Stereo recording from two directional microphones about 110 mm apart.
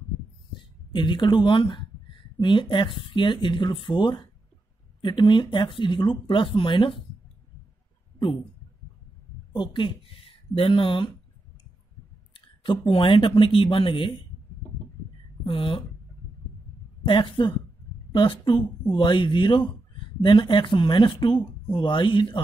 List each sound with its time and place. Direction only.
0.9 s speech: 45° left (ahead or behind)
9.5 s speech: 45° left (ahead or behind)
12.4 s speech: 50° left (ahead or behind)
15.4 s speech: 50° left (ahead or behind)
17.0 s speech: 50° left (ahead or behind)